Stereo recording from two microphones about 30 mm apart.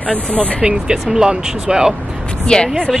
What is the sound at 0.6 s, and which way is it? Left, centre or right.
Speech, right.